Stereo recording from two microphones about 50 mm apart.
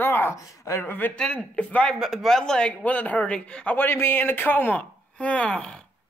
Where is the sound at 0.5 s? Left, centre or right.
Left.